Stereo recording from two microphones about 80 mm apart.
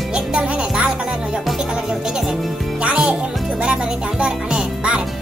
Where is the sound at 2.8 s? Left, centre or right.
Centre.